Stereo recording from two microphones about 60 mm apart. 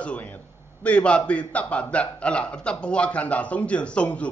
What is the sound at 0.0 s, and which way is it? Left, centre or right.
A man's voice, left.